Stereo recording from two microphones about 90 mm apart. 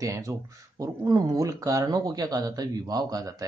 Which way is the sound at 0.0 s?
35° right (ahead or behind).